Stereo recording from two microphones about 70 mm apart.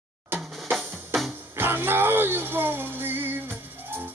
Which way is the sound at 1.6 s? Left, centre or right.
Right.